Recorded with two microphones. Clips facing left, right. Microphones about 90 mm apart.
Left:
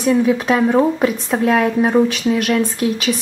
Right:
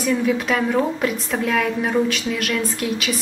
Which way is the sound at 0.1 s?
25° left (ahead or behind).